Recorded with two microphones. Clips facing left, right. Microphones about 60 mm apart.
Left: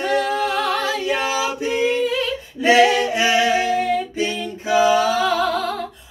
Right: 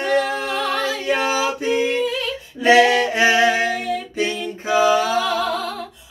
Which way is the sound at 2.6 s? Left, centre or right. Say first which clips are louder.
Right 1 dB; right.